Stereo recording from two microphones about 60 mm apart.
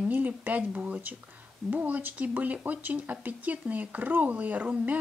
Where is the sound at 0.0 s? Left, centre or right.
Right.